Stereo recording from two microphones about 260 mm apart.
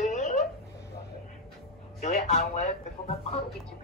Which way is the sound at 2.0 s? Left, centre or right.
Left.